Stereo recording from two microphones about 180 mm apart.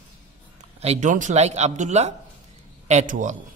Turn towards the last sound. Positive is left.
turn(degrees=-45)  # may be behind; listen again after turning